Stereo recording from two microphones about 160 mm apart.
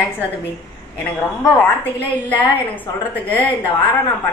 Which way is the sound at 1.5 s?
10° left (ahead or behind).